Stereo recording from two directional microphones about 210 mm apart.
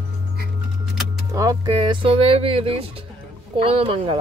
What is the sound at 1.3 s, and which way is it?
Speech, 15° right (ahead or behind).